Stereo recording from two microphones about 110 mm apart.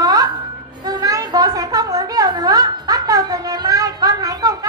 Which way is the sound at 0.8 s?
35° right (ahead or behind).